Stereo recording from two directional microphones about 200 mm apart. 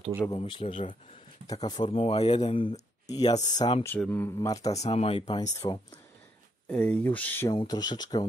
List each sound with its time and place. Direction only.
0.2 s speech: 25° left (ahead or behind)
3.9 s speech: 10° left (ahead or behind)
4.7 s speech: 30° left (ahead or behind)
6.7 s speech: 5° left (ahead or behind)
7.5 s speech: 20° left (ahead or behind)